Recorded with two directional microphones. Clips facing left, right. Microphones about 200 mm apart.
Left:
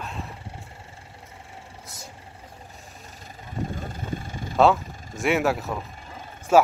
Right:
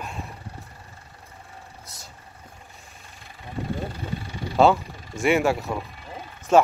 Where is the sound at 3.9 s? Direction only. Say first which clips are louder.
Even; 50° left (ahead or behind).